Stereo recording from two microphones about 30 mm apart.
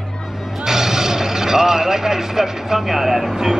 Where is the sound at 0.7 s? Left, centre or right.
Centre.